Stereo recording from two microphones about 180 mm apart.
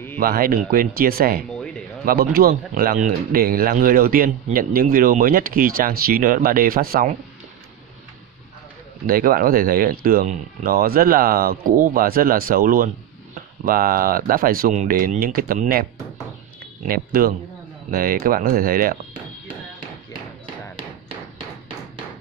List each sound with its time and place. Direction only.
0.2 s speech: 55° right (ahead or behind)
1.5 s music: 5° left (ahead or behind)
2.0 s speech: 55° right (ahead or behind)
9.0 s speech: 50° right (ahead or behind)